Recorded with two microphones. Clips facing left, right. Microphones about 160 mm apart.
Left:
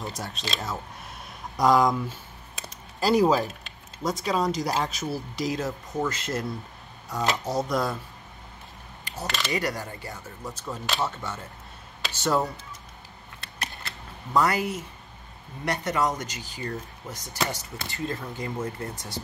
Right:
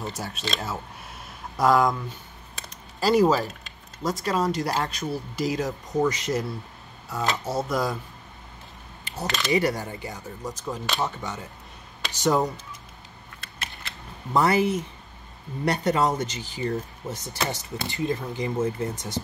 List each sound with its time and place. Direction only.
0.0 s speech: 5° right (ahead or behind)
2.5 s typing: centre (ahead or behind)
4.0 s speech: centre (ahead or behind)
5.6 s speech: 15° right (ahead or behind)
7.1 s speech: centre (ahead or behind)
9.2 s speech: centre (ahead or behind)
9.5 s speech: 20° right (ahead or behind)
14.3 s speech: 25° right (ahead or behind)